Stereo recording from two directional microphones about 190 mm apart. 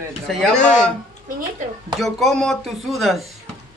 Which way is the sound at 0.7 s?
5° left (ahead or behind).